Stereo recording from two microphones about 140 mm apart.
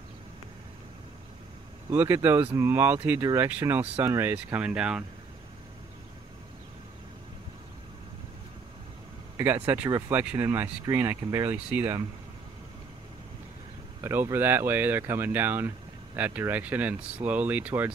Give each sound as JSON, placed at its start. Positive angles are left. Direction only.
{"t": 1.9, "sound": "speech", "side_deg": -15}
{"t": 9.4, "sound": "speech", "side_deg": -15}
{"t": 14.0, "sound": "speech", "side_deg": -15}